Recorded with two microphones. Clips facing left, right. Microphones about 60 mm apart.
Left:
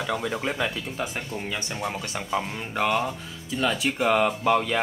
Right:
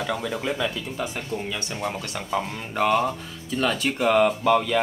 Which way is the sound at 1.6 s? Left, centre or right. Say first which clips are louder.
Right 1 dB; centre.